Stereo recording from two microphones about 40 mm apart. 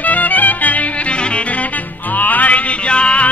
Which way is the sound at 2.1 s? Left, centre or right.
Left.